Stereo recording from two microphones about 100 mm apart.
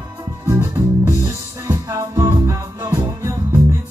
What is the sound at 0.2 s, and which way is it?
Music, 35° right (ahead or behind).